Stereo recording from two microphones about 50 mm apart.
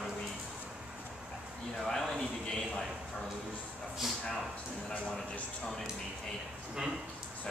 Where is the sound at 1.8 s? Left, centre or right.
Centre.